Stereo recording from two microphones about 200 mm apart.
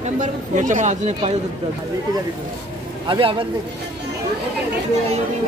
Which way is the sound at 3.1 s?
25° right (ahead or behind).